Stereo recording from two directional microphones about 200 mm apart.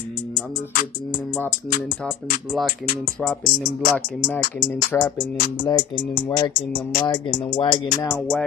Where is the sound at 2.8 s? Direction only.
45° left (ahead or behind).